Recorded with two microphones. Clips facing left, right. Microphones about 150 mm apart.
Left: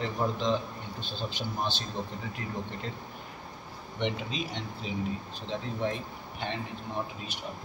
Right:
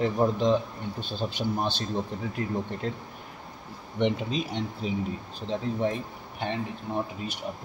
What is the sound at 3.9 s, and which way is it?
Speech, 45° right (ahead or behind).